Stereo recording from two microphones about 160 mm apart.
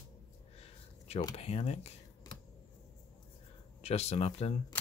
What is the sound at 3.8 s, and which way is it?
Speech, 40° left (ahead or behind).